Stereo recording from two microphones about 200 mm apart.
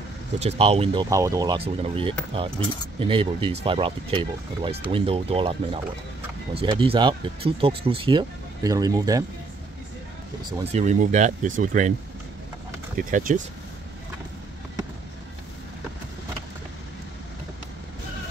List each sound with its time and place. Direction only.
0.4 s speech: 30° right (ahead or behind)
1.1 s speech: 15° right (ahead or behind)
1.6 s speech: 30° right (ahead or behind)
10.6 s speech: 35° right (ahead or behind)
12.9 s speech: 40° right (ahead or behind)